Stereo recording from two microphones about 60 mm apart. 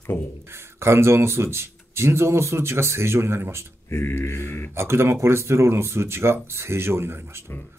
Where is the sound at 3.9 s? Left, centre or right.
Left.